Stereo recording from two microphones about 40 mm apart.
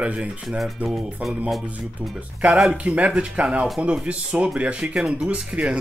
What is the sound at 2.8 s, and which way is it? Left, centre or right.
Speech, right.